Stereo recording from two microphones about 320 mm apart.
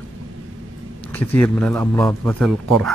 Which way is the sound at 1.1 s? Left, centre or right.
Centre.